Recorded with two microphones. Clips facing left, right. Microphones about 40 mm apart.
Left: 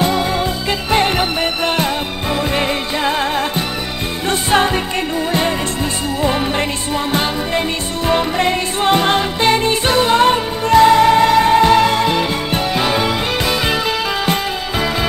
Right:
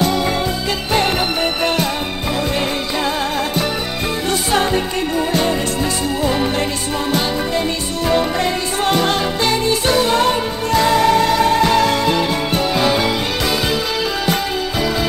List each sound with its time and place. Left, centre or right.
0.7 s music: left
3.1 s music: left
7.1 s music: left